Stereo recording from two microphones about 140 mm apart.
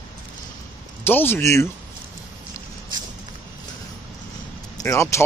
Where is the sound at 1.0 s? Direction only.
15° left (ahead or behind).